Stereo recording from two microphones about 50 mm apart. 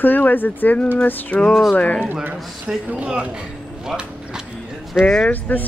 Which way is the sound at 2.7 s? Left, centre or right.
Centre.